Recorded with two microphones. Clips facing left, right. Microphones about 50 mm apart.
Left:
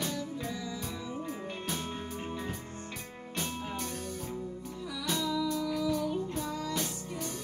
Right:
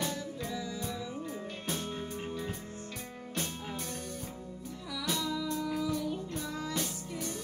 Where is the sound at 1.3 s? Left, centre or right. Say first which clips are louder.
Left 1 dB; centre.